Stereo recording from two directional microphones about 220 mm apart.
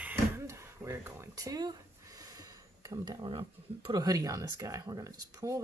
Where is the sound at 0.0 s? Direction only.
10° right (ahead or behind).